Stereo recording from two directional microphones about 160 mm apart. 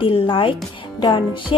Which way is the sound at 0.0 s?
35° left (ahead or behind).